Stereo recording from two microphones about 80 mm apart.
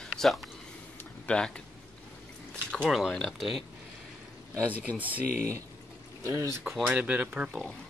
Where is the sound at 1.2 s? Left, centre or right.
Centre.